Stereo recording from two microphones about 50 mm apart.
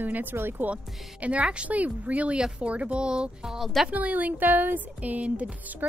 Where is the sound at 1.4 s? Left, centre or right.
Right.